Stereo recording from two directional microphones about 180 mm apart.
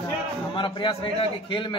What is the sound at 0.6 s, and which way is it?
A man's voice, 25° left (ahead or behind).